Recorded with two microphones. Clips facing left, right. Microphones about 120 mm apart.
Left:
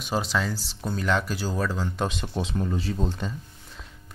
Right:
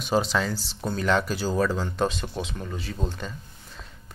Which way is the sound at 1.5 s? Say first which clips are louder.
Right 5 dB; 5° right (ahead or behind).